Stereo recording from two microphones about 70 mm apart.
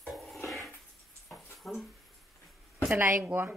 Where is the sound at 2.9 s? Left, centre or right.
Right.